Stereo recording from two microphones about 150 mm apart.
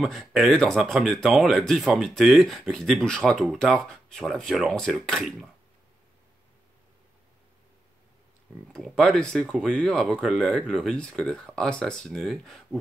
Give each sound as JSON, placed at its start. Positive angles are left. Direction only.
{"t": 0.0, "sound": "speech", "side_deg": 0}
{"t": 8.7, "sound": "speech", "side_deg": 0}